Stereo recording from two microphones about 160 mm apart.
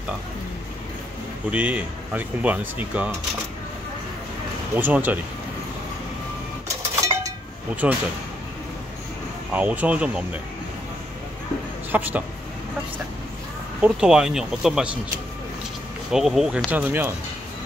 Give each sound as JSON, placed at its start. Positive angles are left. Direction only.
{"t": 1.5, "sound": "speech", "side_deg": -10}
{"t": 4.7, "sound": "speech", "side_deg": -10}
{"t": 7.0, "sound": "a sound", "side_deg": -20}
{"t": 7.8, "sound": "speech", "side_deg": -10}
{"t": 9.5, "sound": "speech", "side_deg": -10}
{"t": 11.9, "sound": "a man's voice", "side_deg": -10}
{"t": 13.7, "sound": "speech", "side_deg": -5}
{"t": 16.1, "sound": "speech", "side_deg": 0}